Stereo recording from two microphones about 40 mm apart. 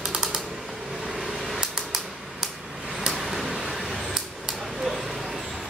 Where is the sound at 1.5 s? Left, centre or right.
Centre.